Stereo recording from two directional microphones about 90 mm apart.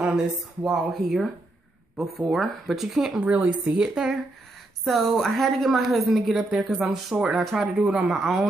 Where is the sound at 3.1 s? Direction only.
15° right (ahead or behind).